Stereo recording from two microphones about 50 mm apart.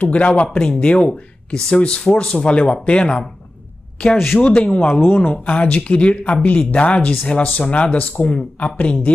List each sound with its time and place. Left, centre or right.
0.0 s speech: left
4.4 s speech: left